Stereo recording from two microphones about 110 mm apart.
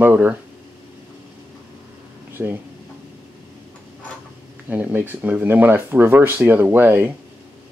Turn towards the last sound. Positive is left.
turn(degrees=-20)  # may be behind; listen again after turning